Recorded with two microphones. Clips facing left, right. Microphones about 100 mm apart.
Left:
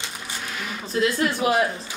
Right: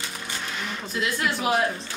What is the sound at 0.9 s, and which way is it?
Speech, 30° left (ahead or behind).